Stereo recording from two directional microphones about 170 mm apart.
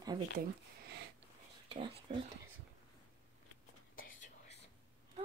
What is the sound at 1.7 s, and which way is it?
Speech, 30° right (ahead or behind).